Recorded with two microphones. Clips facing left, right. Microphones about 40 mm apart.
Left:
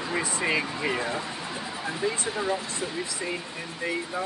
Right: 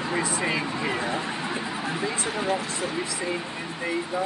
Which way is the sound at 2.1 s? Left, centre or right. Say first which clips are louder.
Right 2 dB; right.